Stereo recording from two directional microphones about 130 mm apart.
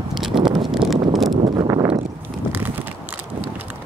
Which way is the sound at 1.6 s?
30° right (ahead or behind).